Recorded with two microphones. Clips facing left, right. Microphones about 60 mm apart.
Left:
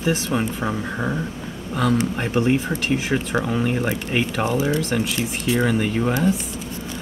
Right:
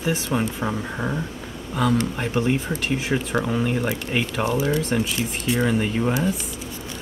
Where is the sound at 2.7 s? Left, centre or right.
Centre.